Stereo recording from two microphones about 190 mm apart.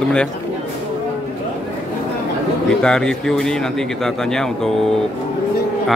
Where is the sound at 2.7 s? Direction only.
5° left (ahead or behind).